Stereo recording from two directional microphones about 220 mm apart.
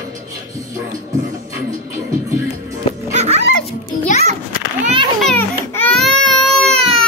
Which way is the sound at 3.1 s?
30° right (ahead or behind).